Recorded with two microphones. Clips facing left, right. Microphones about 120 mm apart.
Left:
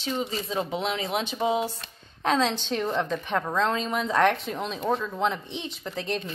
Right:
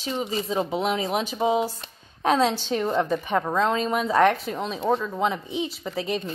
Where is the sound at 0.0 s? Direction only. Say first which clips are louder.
Right 2 dB; 10° right (ahead or behind).